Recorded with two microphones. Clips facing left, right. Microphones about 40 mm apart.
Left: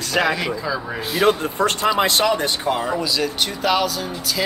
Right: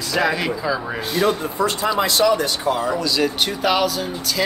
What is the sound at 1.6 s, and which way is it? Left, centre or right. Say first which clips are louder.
Speech: left 1 dB; left.